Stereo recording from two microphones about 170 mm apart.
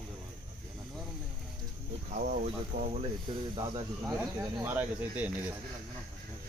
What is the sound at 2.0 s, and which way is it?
Speech, 50° right (ahead or behind).